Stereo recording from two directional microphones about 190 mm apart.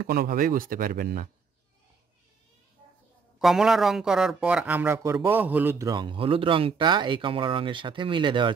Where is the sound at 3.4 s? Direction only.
Centre (ahead or behind).